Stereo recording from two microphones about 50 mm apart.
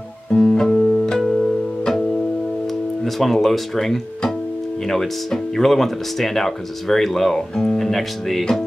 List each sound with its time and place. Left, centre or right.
0.3 s music: centre
2.6 s speech: centre